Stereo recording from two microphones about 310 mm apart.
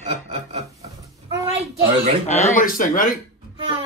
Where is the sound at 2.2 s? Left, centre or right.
Left.